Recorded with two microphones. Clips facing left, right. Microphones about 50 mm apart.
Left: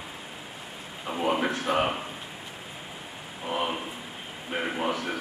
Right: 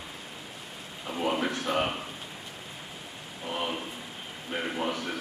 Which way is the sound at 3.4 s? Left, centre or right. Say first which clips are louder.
Left 3 dB; centre.